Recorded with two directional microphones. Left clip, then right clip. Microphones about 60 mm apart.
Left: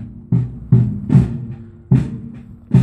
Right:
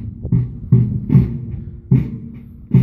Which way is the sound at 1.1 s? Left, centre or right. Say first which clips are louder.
Left 1 dB; centre.